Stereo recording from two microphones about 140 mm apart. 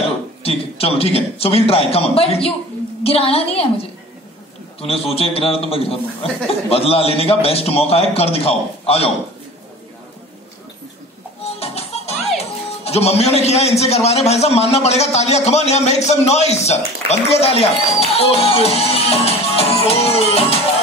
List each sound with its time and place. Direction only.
0.4 s a man's voice: 45° left (ahead or behind)
11.6 s music: 45° left (ahead or behind)
12.4 s a man's voice: 50° left (ahead or behind)